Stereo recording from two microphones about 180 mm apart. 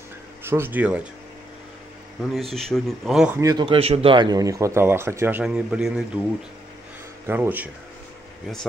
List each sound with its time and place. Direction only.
0.4 s speech: 10° right (ahead or behind)
2.5 s speech: centre (ahead or behind)
3.3 s speech: 20° right (ahead or behind); by 6.2 s 5° right (ahead or behind)
7.2 s speech: 10° right (ahead or behind)